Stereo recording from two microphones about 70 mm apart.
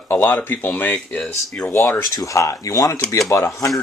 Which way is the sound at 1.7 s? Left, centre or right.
Left.